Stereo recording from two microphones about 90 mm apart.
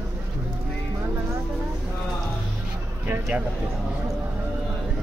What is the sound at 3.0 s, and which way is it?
Speech, 20° right (ahead or behind).